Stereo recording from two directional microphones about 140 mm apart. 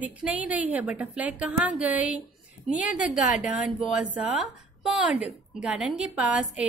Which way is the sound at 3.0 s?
60° left (ahead or behind).